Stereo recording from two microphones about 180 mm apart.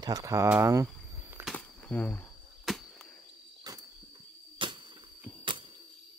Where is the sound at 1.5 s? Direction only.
5° left (ahead or behind).